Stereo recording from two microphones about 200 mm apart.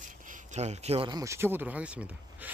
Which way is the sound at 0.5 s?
35° right (ahead or behind).